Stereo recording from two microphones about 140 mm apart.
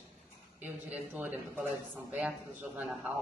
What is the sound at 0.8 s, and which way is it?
A man's voice, 10° right (ahead or behind).